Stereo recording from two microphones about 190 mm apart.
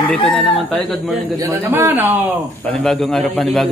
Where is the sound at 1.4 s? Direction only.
15° right (ahead or behind).